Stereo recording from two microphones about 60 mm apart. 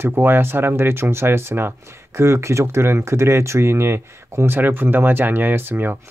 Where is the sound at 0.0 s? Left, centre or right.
Right.